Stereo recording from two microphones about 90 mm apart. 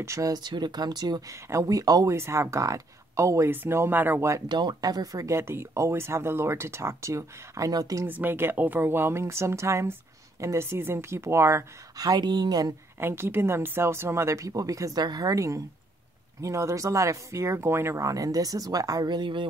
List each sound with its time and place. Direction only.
0.0 s speech: 35° right (ahead or behind)
0.4 s speech: 55° right (ahead or behind)
1.3 s speech: 35° right (ahead or behind)
2.1 s speech: 30° right (ahead or behind)
4.5 s speech: 55° right (ahead or behind)
8.1 s speech: 20° right (ahead or behind)
12.0 s speech: 50° right (ahead or behind)
13.0 s speech: 25° right (ahead or behind)
19.0 s a woman's voice: 60° right (ahead or behind)